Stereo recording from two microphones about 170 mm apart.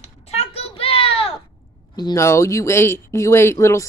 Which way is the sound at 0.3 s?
35° left (ahead or behind).